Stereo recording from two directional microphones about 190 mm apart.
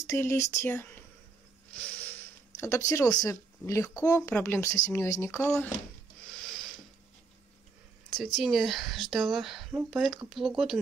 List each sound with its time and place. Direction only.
0.0 s speech: 15° left (ahead or behind)
1.7 s a sound: 5° left (ahead or behind)
4.0 s speech: 15° left (ahead or behind)
6.3 s mechanisms: centre (ahead or behind)
8.4 s speech: centre (ahead or behind)